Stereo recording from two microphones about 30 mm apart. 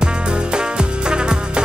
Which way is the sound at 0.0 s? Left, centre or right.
Right.